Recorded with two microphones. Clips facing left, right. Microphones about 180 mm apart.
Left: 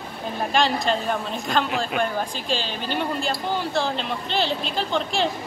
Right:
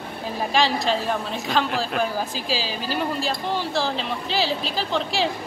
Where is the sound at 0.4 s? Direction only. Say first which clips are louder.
Even; centre (ahead or behind).